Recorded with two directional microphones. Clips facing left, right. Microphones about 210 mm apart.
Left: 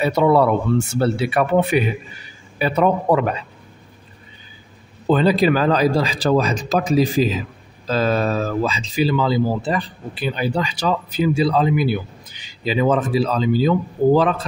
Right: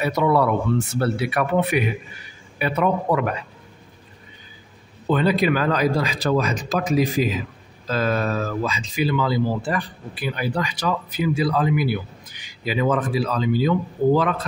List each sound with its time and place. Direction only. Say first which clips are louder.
0.0 s speech: left 4 dB; 30° left (ahead or behind)
5.0 s speech: left 4 dB; 30° left (ahead or behind)